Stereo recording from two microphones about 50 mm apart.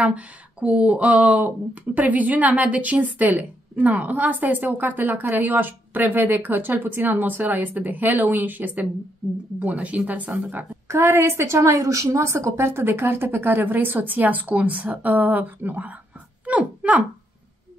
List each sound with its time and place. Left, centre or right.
0.0 s speech: right
10.9 s a woman's voice: right
16.4 s a sound: right